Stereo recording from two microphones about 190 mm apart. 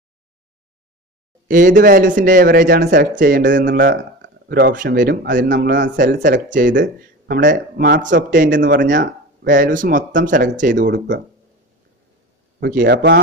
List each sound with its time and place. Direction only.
1.5 s speech: 45° right (ahead or behind)
3.9 s speech: 60° right (ahead or behind)
12.5 s a man's voice: 55° right (ahead or behind)